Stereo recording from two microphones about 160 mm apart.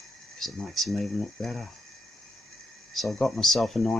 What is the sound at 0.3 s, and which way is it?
Speech, centre (ahead or behind).